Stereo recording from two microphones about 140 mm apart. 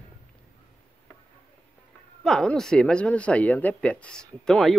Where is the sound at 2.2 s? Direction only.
5° left (ahead or behind).